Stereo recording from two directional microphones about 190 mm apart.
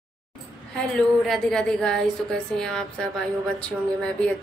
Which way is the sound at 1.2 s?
Centre (ahead or behind).